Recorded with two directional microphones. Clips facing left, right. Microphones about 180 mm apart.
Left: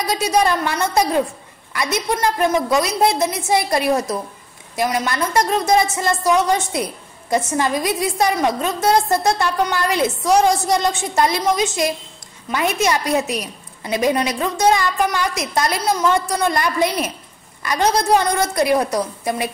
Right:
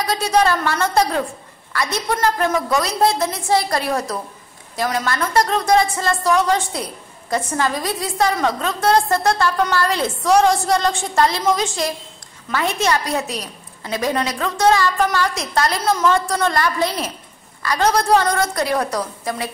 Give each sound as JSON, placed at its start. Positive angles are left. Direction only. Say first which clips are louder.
{"t": 0.4, "sound": "a woman's voice", "louder": "right 1 dB", "side_deg": 15}